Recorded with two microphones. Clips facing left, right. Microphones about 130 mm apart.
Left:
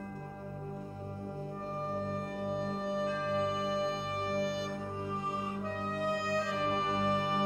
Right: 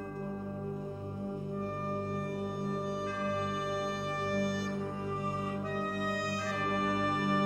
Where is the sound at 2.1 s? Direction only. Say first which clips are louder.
Even; 20° left (ahead or behind).